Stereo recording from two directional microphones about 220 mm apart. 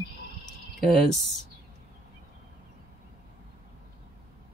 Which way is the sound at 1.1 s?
Centre (ahead or behind).